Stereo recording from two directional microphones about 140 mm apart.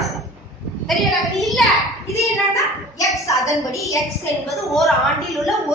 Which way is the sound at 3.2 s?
25° left (ahead or behind).